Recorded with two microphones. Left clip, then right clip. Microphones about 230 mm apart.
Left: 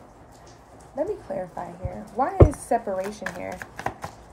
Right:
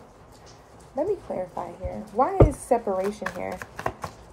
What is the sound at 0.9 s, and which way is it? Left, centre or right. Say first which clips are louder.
A woman's voice: right 1 dB; right.